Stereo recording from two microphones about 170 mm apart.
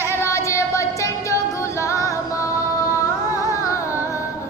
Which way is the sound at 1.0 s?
20° left (ahead or behind).